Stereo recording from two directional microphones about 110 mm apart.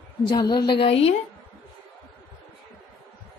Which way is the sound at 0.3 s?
40° left (ahead or behind).